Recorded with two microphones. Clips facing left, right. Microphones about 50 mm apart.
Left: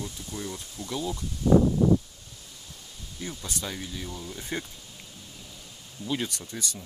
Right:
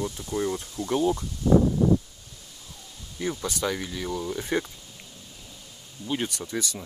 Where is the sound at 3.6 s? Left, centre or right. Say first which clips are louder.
Right 7 dB; right.